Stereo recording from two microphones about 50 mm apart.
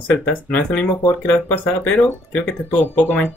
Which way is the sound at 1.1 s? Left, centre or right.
Left.